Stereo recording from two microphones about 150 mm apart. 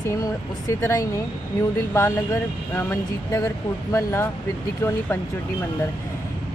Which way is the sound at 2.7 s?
20° left (ahead or behind).